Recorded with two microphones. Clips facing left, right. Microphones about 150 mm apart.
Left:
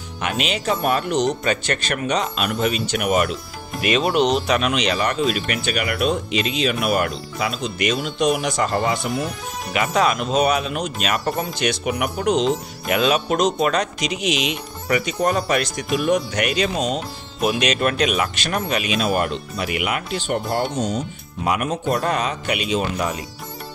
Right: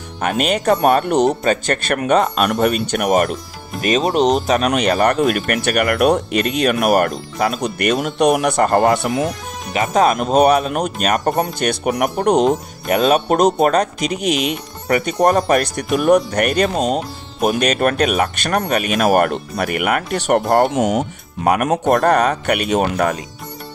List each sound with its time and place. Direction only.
0.2 s speech: 45° right (ahead or behind); by 9.3 s 80° right
9.7 s speech: 40° right (ahead or behind)
14.9 s speech: 50° right (ahead or behind)
20.4 s a man's voice: 55° right (ahead or behind)
20.7 s speech: 90° right
21.6 s a man's voice: 60° right (ahead or behind)